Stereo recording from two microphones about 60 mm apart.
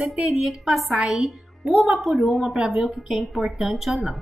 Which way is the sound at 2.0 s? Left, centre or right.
Centre.